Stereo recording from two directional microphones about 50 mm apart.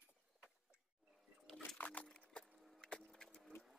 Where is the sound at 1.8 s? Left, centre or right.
Left.